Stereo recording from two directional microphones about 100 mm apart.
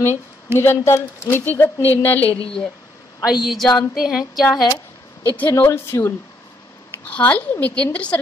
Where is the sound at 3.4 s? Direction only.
Centre (ahead or behind).